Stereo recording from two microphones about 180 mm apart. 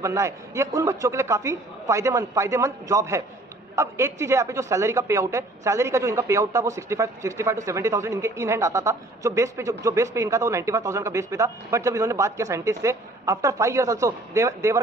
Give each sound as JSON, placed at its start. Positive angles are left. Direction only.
{"t": 0.0, "sound": "a woman's voice", "side_deg": -15}